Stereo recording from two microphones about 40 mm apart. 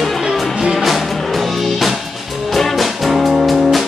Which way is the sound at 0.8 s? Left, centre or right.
Centre.